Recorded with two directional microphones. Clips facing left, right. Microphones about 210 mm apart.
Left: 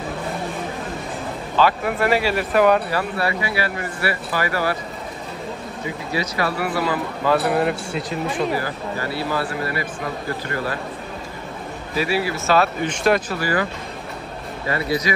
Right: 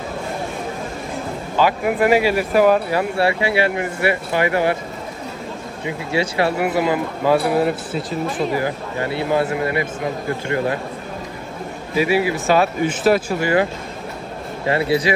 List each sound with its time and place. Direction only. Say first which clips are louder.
1.6 s speech: right 2 dB; 15° right (ahead or behind)
3.2 s speech: right 5 dB; 25° right (ahead or behind)
6.1 s speech: right 5 dB; 25° right (ahead or behind)
7.4 s speech: right 2 dB; centre (ahead or behind)
8.5 s speech: right 3 dB; 20° right (ahead or behind)
12.0 s speech: right 4 dB; 15° right (ahead or behind)
13.4 s speech: right 5 dB; 25° right (ahead or behind)
14.7 s speech: right 5 dB; 30° right (ahead or behind)